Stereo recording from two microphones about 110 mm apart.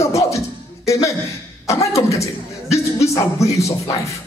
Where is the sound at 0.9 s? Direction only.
30° left (ahead or behind).